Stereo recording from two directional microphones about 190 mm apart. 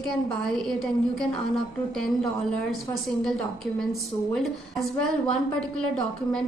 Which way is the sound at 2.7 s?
Centre (ahead or behind).